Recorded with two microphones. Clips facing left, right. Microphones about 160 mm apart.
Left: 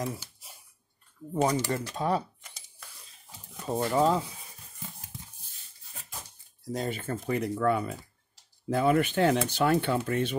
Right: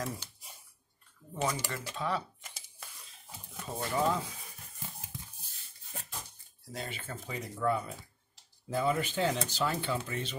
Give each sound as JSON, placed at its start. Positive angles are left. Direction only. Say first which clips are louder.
{"t": 0.2, "sound": "a sound", "louder": "left 1 dB", "side_deg": 0}
{"t": 1.3, "sound": "speech", "louder": "left 8 dB", "side_deg": 40}
{"t": 3.6, "sound": "speech", "louder": "left 6 dB", "side_deg": 35}
{"t": 6.7, "sound": "speech", "louder": "left 9 dB", "side_deg": 45}